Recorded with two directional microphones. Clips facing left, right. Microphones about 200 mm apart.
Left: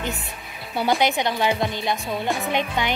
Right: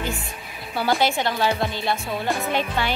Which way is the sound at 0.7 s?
20° left (ahead or behind).